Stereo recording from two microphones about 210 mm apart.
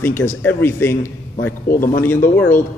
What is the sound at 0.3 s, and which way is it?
A man's voice, 10° left (ahead or behind).